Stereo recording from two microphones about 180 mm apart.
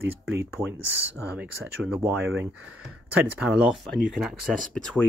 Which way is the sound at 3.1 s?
5° right (ahead or behind).